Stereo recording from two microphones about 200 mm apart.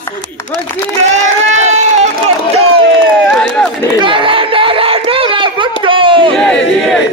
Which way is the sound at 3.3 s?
5° left (ahead or behind).